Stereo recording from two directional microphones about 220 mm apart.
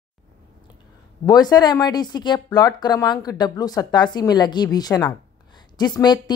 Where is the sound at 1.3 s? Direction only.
15° left (ahead or behind).